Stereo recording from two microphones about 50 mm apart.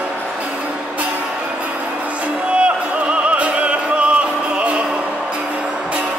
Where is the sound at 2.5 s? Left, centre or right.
Right.